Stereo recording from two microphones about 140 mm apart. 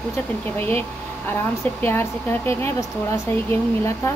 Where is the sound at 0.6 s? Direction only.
10° left (ahead or behind).